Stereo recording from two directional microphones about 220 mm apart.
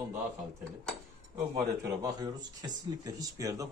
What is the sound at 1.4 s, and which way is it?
Speech, 15° right (ahead or behind).